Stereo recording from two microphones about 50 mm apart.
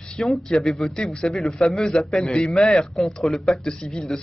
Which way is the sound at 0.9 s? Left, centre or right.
Centre.